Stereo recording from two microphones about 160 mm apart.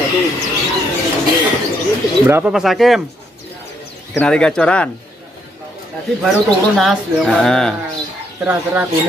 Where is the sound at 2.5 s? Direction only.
Centre (ahead or behind).